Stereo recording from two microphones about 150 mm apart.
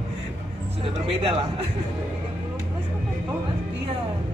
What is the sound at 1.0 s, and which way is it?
Speech, 40° right (ahead or behind).